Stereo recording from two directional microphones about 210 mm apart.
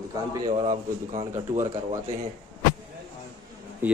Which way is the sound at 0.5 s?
40° right (ahead or behind).